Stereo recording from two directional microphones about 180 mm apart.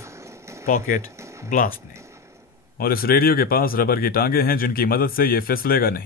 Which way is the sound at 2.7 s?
55° left (ahead or behind).